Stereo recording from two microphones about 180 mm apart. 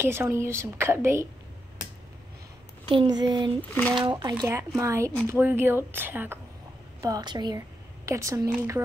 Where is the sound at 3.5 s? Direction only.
10° left (ahead or behind).